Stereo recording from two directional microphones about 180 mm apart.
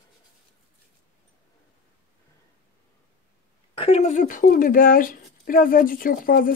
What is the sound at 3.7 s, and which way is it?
Speech, 35° left (ahead or behind).